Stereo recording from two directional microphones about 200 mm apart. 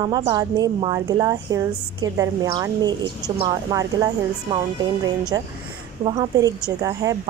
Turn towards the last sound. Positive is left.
turn(degrees=-20)  # may be behind; listen again after turning